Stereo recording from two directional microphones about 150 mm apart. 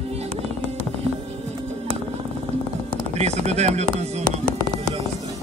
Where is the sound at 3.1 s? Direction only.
45° right (ahead or behind).